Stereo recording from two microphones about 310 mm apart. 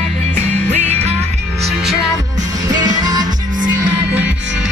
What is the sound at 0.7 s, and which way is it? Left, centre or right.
Music, right.